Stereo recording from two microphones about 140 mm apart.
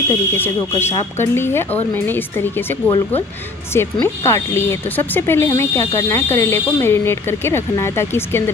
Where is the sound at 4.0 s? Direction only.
20° left (ahead or behind).